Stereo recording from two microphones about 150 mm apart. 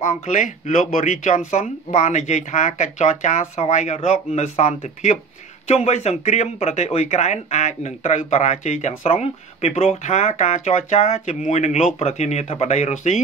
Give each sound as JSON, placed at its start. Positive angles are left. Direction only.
{"t": 0.0, "sound": "speech", "side_deg": 55}